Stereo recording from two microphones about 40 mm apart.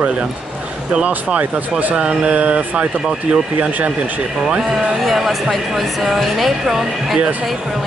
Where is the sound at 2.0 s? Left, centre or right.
Right.